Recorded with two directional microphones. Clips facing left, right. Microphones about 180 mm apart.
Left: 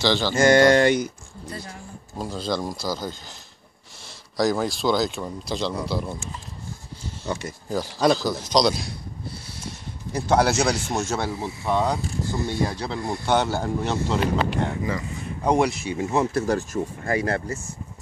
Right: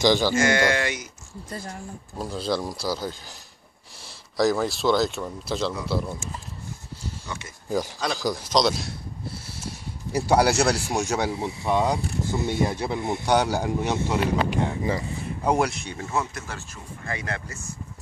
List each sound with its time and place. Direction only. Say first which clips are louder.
0.0 s speech: right 2 dB; 15° right (ahead or behind)
0.4 s speech: left 7 dB; 35° left (ahead or behind)
1.5 s speech: right 1 dB; 45° right (ahead or behind)
2.1 s speech: even; 5° right (ahead or behind)
4.4 s speech: even; centre (ahead or behind)
7.3 s speech: left 9 dB; 35° left (ahead or behind)
8.2 s speech: left 1 dB; 10° right (ahead or behind)
10.1 s speech: even; 10° right (ahead or behind)
16.0 s speech: left 5 dB; 20° left (ahead or behind)
16.3 s speech: left 15 dB; 40° left (ahead or behind)